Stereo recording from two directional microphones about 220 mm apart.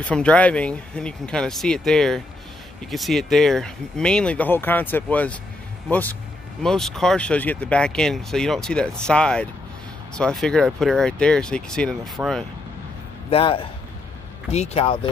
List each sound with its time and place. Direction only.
0.0 s speech: 5° left (ahead or behind)
13.3 s speech: 25° left (ahead or behind)